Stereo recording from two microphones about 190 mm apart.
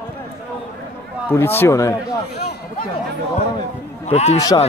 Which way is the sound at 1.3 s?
10° left (ahead or behind).